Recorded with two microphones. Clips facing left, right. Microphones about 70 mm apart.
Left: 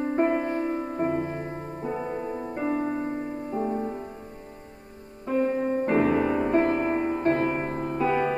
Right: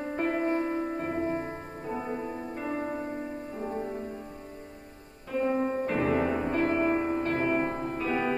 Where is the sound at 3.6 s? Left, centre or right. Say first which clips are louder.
Left 3 dB; centre.